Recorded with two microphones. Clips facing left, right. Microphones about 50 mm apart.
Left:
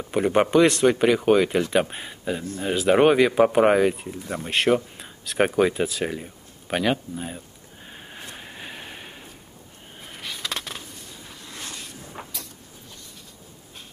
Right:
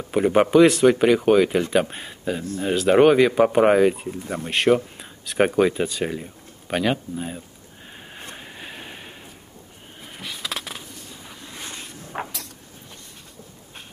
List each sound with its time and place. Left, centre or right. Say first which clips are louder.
0.0 s speech: right 2 dB; centre
7.9 s a sound: right 1 dB; centre
11.4 s vehicle: right 1 dB; centre
12.1 s vehicle: right 10 dB; right